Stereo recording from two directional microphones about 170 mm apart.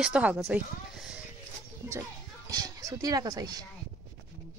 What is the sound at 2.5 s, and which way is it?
Speech, 20° right (ahead or behind).